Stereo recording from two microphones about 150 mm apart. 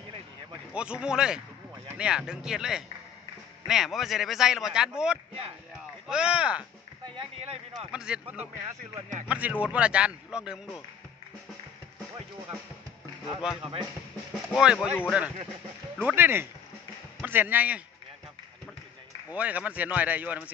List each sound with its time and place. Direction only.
0.7 s speech: 5° right (ahead or behind)
7.2 s speech: 40° right (ahead or behind)
7.9 s speech: 5° right (ahead or behind)
13.4 s speech: 5° right (ahead or behind)
19.3 s speech: 10° right (ahead or behind)